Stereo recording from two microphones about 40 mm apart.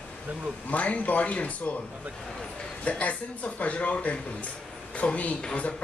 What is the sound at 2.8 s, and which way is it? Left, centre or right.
Speech, left.